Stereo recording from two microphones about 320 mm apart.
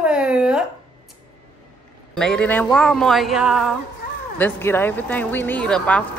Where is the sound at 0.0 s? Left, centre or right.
Centre.